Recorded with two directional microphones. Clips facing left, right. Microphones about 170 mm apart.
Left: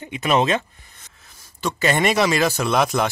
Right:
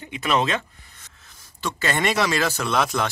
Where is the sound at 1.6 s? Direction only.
15° left (ahead or behind).